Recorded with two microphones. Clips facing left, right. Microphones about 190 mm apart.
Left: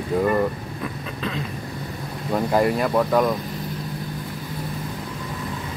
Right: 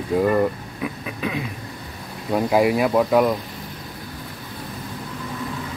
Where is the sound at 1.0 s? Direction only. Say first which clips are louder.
Right 2 dB; 10° right (ahead or behind).